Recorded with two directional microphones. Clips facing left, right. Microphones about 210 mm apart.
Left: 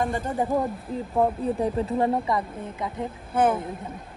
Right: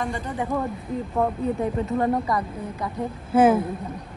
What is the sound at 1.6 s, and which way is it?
A woman's voice, 30° left (ahead or behind).